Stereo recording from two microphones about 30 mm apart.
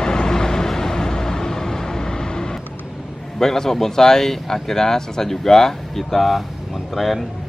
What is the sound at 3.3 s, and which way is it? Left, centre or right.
A man's voice, centre.